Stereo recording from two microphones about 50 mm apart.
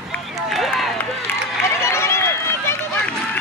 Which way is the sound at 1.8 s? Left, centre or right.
Left.